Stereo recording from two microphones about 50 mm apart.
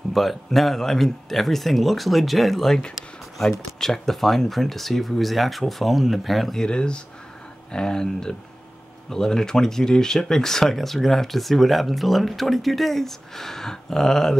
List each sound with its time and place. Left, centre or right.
0.1 s speech: centre